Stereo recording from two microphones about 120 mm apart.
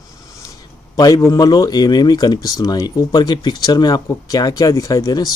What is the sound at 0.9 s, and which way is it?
Speech, 30° left (ahead or behind).